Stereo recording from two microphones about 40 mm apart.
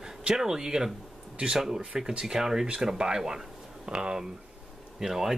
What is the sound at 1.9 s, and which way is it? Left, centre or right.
Speech, centre.